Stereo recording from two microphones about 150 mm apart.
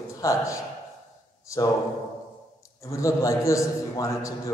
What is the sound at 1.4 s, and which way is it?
Speech, 20° left (ahead or behind).